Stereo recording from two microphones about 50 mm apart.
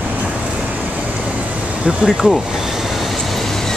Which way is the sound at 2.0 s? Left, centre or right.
Centre.